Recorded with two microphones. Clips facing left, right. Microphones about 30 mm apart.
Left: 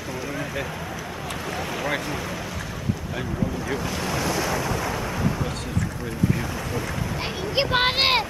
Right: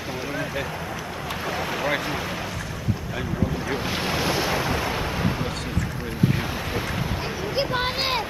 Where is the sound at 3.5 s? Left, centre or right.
Right.